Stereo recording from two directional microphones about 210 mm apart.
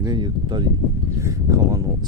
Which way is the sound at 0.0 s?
20° right (ahead or behind).